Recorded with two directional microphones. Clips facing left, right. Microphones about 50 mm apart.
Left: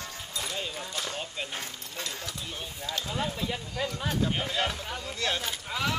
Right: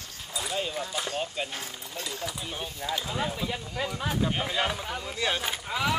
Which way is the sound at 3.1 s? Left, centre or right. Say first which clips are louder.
Right 1 dB; centre.